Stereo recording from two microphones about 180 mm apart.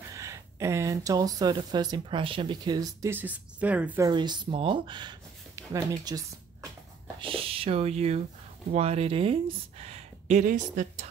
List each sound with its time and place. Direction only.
0.1 s speech: 15° right (ahead or behind)
4.1 s speech: 25° right (ahead or behind); by 11.1 s 45° right (ahead or behind)